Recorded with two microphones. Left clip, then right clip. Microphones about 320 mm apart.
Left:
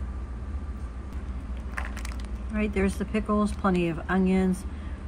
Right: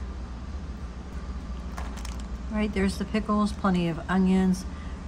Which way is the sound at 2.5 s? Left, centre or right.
Centre.